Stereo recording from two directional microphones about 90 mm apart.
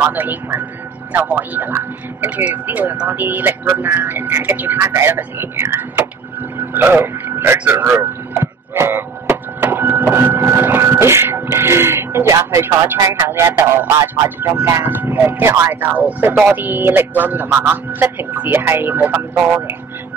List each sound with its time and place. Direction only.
0.1 s speech: 20° right (ahead or behind)
7.9 s a sound: 30° right (ahead or behind)
13.0 s speech: 40° right (ahead or behind)
13.5 s speech: 25° right (ahead or behind)